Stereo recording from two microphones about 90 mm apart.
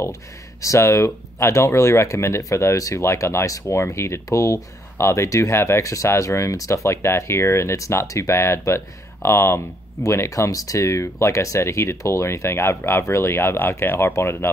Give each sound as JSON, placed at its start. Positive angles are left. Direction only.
{"t": 0.0, "sound": "speech", "side_deg": 35}